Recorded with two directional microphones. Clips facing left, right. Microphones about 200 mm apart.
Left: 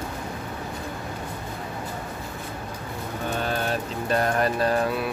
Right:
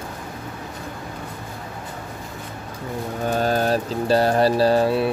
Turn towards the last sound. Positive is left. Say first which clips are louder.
# right 6 dB
turn(degrees=-30)  # may be behind; listen again after turning